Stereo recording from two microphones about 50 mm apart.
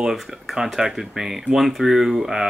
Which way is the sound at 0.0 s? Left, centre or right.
Centre.